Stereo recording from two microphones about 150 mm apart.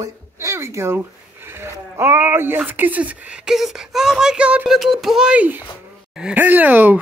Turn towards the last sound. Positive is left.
turn(degrees=-10)  # may be behind; listen again after turning